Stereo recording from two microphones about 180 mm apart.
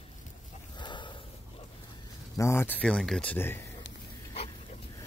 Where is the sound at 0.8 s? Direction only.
25° left (ahead or behind).